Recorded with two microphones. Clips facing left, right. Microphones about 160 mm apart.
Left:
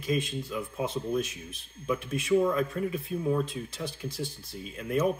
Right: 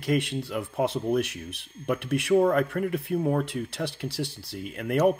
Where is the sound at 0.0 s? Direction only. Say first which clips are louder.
Right 4 dB; 70° right (ahead or behind).